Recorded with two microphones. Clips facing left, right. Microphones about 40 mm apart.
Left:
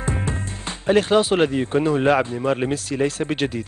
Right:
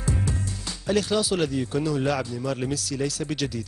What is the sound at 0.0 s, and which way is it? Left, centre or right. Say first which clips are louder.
Speech: left 3 dB; left.